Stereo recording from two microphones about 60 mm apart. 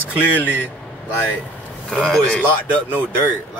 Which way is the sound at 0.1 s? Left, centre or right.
Right.